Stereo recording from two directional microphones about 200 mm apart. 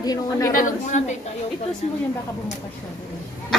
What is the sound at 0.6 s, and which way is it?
Speech, 40° left (ahead or behind).